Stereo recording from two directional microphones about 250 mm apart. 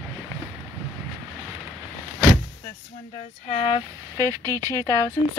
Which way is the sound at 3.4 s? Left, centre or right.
Left.